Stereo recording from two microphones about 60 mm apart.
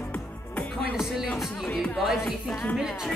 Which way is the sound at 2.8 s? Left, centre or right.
Centre.